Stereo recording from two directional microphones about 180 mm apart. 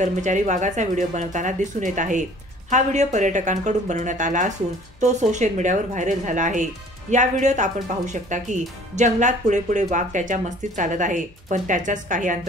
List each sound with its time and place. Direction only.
0.0 s speech: 45° right (ahead or behind)